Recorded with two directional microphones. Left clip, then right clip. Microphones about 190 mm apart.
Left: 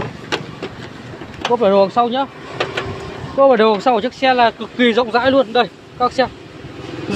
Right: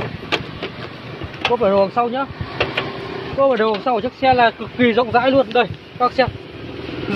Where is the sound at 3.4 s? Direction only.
55° left (ahead or behind).